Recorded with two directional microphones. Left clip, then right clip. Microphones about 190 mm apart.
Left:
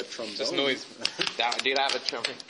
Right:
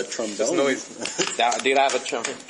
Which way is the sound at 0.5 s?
35° left (ahead or behind).